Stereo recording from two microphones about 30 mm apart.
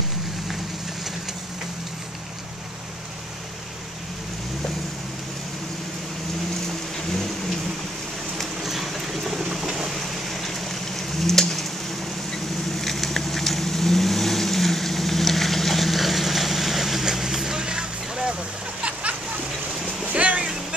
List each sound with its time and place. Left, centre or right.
6.7 s vehicle: centre
8.6 s vehicle: centre
9.4 s boat: centre
9.8 s a sound: centre
12.7 s vehicle: centre
17.6 s vehicle: right
18.8 s a sound: right
20.1 s vehicle: right